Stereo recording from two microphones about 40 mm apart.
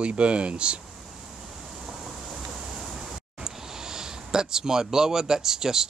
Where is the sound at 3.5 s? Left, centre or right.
Centre.